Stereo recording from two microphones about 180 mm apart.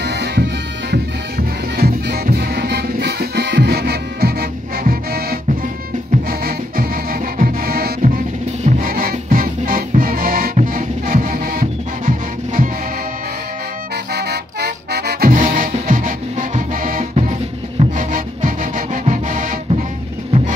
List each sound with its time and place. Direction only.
0.0 s music: 65° right (ahead or behind)
1.8 s music: 55° right (ahead or behind)
6.4 s music: 55° right (ahead or behind)
14.1 s music: 65° right (ahead or behind); by 19.8 s 45° right (ahead or behind)